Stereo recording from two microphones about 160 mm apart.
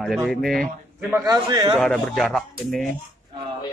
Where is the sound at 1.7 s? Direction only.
5° left (ahead or behind).